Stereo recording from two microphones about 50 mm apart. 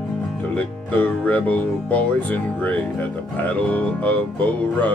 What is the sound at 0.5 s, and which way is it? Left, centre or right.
Speech, left.